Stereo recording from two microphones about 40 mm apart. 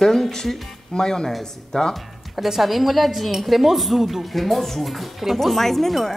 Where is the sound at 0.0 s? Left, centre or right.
Centre.